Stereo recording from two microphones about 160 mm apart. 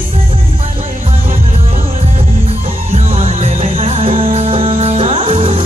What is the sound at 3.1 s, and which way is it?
Music, 40° right (ahead or behind).